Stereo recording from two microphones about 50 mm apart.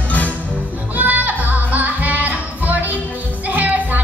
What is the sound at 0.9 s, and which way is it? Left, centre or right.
Music, right.